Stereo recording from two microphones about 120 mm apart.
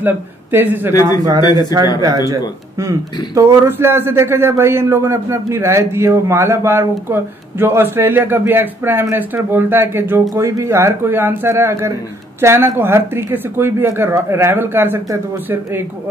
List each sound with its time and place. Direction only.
0.0 s speech: 15° right (ahead or behind)
1.4 s a man's voice: 35° left (ahead or behind)
2.0 s a man's voice: 30° right (ahead or behind)
3.3 s a man's voice: 20° right (ahead or behind)